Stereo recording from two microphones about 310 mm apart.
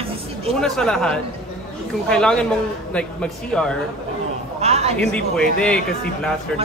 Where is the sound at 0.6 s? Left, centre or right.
Centre.